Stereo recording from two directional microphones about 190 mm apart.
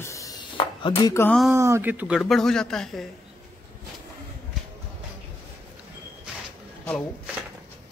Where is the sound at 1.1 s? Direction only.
10° left (ahead or behind).